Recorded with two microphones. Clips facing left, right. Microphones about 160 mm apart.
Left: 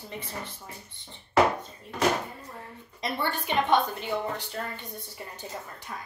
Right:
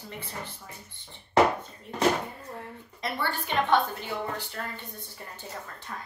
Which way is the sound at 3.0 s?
20° left (ahead or behind).